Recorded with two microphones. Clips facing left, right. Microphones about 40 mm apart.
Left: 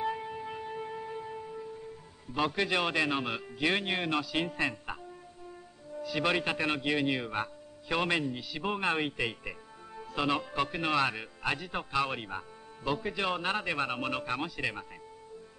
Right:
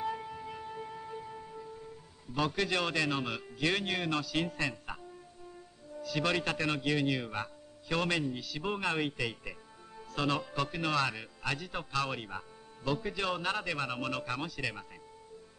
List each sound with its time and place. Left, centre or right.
0.0 s music: left
2.3 s a man's voice: centre
5.9 s a man's voice: centre